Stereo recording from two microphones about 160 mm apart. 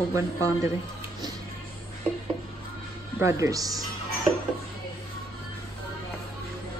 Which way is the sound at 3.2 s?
20° right (ahead or behind).